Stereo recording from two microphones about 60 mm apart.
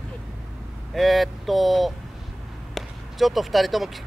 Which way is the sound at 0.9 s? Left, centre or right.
Centre.